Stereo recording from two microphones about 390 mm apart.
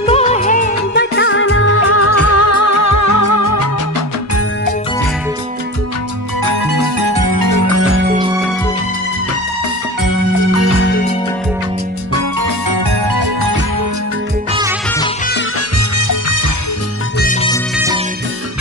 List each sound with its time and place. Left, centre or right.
0.0 s music: centre; by 3.4 s left
6.4 s music: right
10.0 s music: left
10.8 s music: left
12.6 s music: right
16.0 s music: left
17.2 s music: centre
17.7 s music: centre